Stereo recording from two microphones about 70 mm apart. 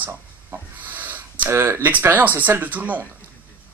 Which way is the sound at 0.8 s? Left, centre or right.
Right.